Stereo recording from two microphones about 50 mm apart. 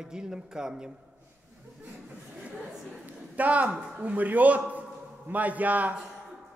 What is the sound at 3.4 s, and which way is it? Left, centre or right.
A man's voice, right.